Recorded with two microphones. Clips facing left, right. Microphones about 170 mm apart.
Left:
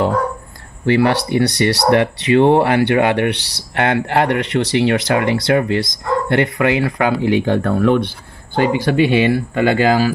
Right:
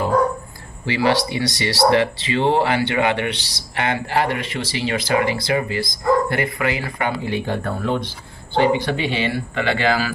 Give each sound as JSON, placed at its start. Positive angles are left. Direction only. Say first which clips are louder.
{"t": 0.8, "sound": "speech", "louder": "left 4 dB", "side_deg": 55}
{"t": 8.5, "sound": "speech", "louder": "left 3 dB", "side_deg": 45}